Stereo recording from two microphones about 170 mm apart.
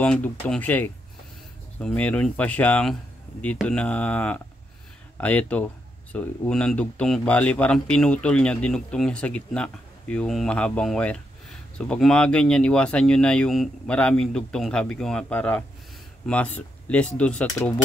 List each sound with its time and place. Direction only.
0.0 s speech: 5° left (ahead or behind)